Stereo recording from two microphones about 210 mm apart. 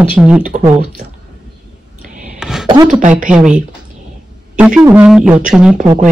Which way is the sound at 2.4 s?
Centre (ahead or behind).